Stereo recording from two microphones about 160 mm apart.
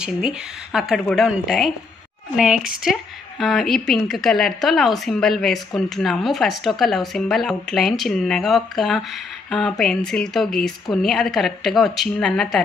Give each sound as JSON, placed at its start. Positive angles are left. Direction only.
{"t": 0.0, "sound": "a woman's voice", "side_deg": -5}